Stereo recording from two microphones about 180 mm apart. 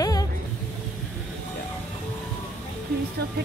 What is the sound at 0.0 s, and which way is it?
Music, 20° left (ahead or behind).